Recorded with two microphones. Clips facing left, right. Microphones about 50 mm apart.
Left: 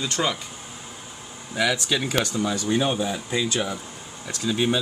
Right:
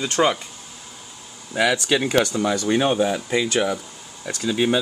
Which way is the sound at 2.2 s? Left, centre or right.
Right.